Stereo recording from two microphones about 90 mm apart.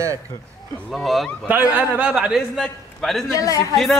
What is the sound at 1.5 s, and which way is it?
A man's voice, 20° right (ahead or behind).